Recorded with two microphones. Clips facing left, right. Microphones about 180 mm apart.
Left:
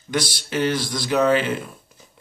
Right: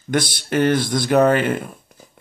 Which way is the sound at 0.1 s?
55° right (ahead or behind).